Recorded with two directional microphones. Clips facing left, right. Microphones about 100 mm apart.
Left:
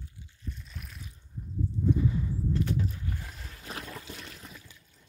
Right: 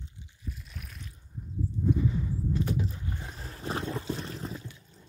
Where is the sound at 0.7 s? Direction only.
Centre (ahead or behind).